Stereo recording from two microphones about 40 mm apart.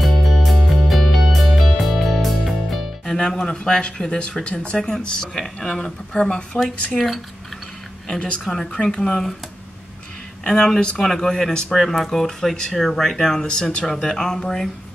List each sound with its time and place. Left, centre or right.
0.0 s music: centre
3.2 s speech: centre
7.0 s speech: centre
8.7 s speech: centre
10.4 s speech: centre